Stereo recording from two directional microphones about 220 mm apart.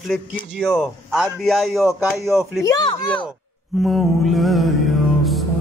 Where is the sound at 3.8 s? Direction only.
Centre (ahead or behind).